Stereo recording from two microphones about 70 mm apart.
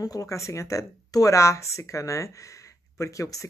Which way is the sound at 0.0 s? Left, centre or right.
Left.